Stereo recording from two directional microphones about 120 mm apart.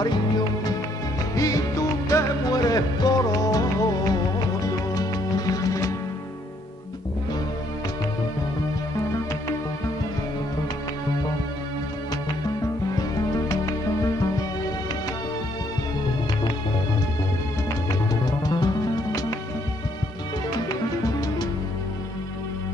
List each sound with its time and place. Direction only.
0.0 s music: 35° left (ahead or behind)
13.3 s music: 30° left (ahead or behind)
18.2 s music: 35° left (ahead or behind)
20.6 s music: 30° left (ahead or behind)